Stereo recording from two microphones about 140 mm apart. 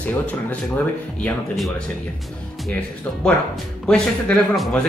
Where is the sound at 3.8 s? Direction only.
5° left (ahead or behind).